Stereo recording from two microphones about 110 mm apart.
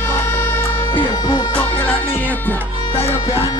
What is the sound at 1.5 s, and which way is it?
Music, 15° left (ahead or behind).